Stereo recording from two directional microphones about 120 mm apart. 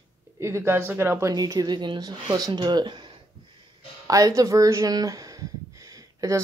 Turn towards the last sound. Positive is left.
turn(degrees=-30)  # may be behind; listen again after turning